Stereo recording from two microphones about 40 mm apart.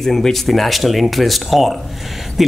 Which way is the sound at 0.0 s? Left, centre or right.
Centre.